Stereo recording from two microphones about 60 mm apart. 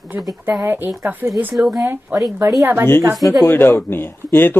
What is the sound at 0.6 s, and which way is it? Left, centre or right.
Speech, right.